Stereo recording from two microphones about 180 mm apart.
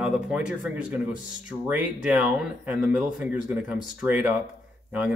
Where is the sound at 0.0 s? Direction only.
5° right (ahead or behind).